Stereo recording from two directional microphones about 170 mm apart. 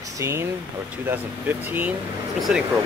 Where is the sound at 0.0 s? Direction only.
20° right (ahead or behind).